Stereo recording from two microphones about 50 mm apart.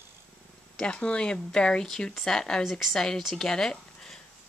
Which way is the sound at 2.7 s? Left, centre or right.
Centre.